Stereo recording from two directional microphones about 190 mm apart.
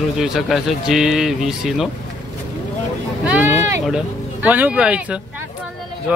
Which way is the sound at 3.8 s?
5° right (ahead or behind).